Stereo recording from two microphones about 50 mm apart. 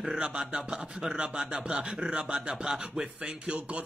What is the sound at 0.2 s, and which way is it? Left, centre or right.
Speech, right.